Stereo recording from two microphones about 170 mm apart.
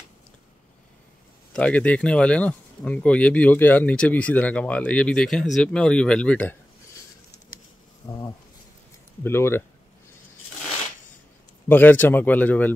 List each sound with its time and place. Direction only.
1.5 s speech: 5° left (ahead or behind)
8.0 s a sound: 20° left (ahead or behind)
9.2 s speech: 15° left (ahead or behind)
11.7 s speech: 10° left (ahead or behind)